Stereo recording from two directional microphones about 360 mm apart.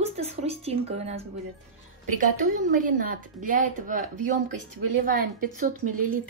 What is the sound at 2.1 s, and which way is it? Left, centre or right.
A woman's voice, right.